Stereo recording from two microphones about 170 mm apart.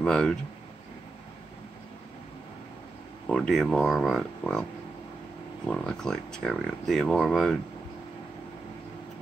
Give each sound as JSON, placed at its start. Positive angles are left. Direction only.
{"t": 0.0, "sound": "speech", "side_deg": 5}
{"t": 3.3, "sound": "speech", "side_deg": 0}
{"t": 5.7, "sound": "speech", "side_deg": 5}